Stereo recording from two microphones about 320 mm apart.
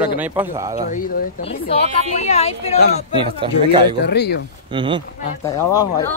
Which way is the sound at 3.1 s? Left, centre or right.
Centre.